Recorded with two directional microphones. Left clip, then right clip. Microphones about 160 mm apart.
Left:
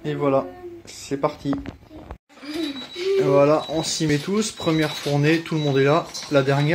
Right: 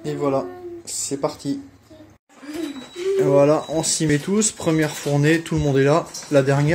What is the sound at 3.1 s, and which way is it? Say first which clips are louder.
Speech: right 1 dB; 20° right (ahead or behind).